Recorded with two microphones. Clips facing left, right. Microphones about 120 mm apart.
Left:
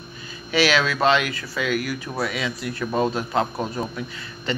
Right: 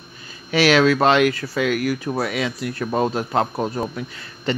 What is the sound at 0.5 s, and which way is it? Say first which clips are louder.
Speech: right 5 dB; 50° right (ahead or behind).